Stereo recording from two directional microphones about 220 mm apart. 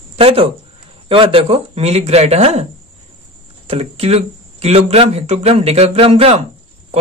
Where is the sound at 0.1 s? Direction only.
25° right (ahead or behind).